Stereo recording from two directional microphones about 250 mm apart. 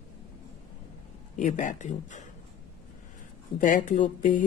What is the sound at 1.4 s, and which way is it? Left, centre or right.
Speech, left.